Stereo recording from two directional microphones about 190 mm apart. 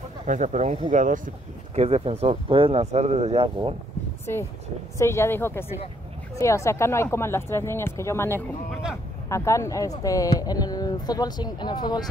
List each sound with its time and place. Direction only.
0.3 s speech: 40° right (ahead or behind)
1.8 s speech: 35° right (ahead or behind)
4.9 s speech: 15° left (ahead or behind)